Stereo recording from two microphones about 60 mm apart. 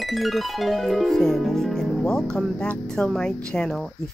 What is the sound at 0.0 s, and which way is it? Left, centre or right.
Speech, centre.